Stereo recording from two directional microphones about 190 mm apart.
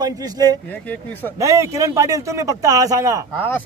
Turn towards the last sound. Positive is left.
turn(degrees=10)  # may be behind; listen again after turning